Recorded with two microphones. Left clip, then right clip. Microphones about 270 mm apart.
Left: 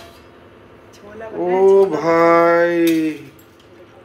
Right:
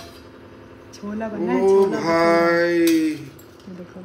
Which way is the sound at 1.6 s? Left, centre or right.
Centre.